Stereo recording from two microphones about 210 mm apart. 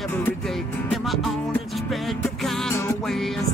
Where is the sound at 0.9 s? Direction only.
Centre (ahead or behind).